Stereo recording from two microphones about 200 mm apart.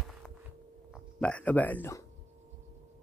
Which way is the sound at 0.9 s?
Centre (ahead or behind).